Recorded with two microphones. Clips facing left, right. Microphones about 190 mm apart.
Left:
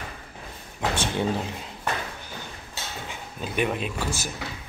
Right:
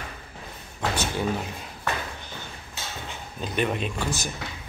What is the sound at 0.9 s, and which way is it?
Speech, 25° left (ahead or behind).